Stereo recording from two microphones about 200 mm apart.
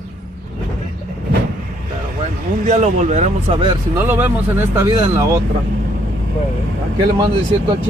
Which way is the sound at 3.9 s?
10° right (ahead or behind).